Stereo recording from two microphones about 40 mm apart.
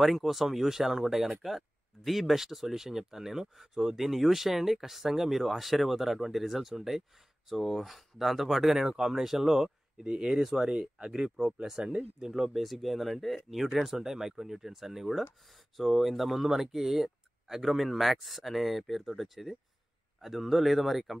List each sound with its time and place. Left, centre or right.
0.0 s speech: centre
10.7 s speech: right
11.8 s speech: right
12.2 s speech: centre